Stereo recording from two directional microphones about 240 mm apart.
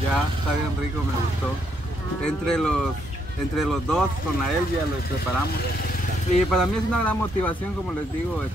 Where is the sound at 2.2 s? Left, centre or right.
Centre.